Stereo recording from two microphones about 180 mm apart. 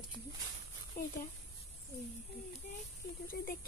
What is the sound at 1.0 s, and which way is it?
Speech, 55° left (ahead or behind).